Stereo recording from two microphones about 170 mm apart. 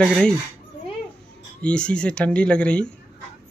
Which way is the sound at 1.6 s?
5° left (ahead or behind).